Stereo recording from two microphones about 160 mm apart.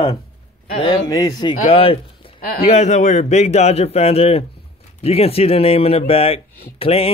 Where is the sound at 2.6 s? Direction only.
45° left (ahead or behind).